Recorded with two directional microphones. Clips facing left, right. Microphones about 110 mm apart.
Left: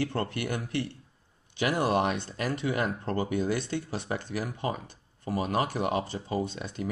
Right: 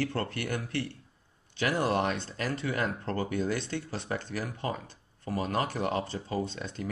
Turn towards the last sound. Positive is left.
turn(degrees=10)  # may be behind; listen again after turning